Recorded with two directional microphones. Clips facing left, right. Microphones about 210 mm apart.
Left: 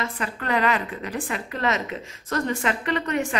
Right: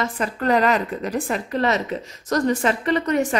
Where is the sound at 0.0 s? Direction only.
40° right (ahead or behind).